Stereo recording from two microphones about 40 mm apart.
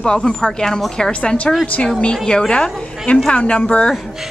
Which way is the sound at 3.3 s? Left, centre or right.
Left.